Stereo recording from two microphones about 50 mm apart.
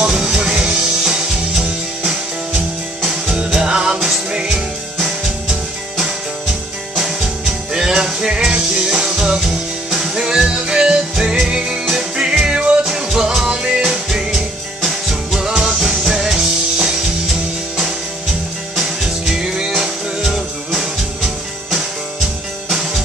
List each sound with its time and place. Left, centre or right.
0.1 s music: centre
7.7 s music: centre
18.8 s music: centre